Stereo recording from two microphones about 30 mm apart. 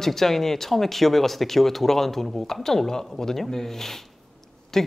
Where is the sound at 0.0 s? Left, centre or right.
Centre.